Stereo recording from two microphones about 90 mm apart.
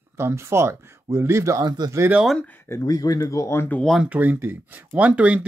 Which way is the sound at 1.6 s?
50° right (ahead or behind).